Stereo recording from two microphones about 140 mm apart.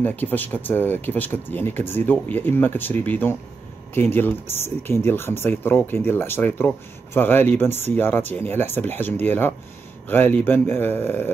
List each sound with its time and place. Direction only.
0.0 s speech: 10° left (ahead or behind)